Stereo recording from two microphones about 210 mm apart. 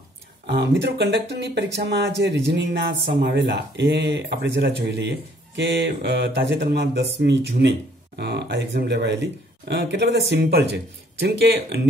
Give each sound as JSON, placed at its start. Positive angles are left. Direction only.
{"t": 0.5, "sound": "speech", "side_deg": -55}